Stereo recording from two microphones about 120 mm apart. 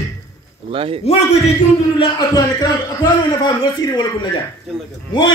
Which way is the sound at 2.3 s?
35° left (ahead or behind).